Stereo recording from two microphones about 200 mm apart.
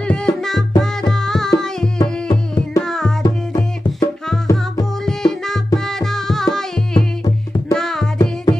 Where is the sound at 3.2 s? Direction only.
20° left (ahead or behind).